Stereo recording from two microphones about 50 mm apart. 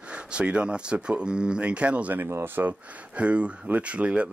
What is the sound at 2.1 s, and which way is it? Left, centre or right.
Speech, right.